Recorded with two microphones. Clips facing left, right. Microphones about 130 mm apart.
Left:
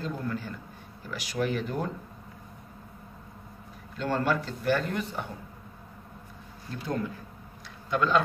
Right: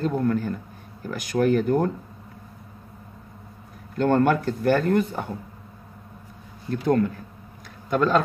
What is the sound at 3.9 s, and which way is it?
Speech, 55° right (ahead or behind).